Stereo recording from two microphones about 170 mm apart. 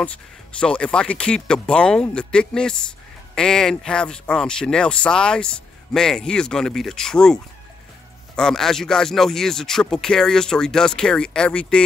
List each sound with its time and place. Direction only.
0.6 s speech: 5° left (ahead or behind)
8.4 s speech: 5° left (ahead or behind)